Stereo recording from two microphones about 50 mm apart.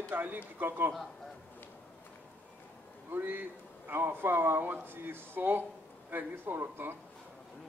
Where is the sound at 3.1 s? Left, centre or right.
Right.